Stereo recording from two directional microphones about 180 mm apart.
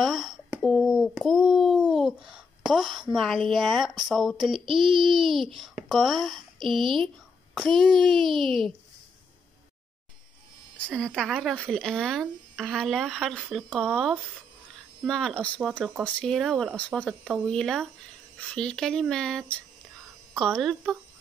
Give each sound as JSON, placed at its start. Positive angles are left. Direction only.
{"t": 0.0, "sound": "a sound", "side_deg": 0}
{"t": 4.0, "sound": "speech", "side_deg": 0}
{"t": 11.0, "sound": "speech", "side_deg": 5}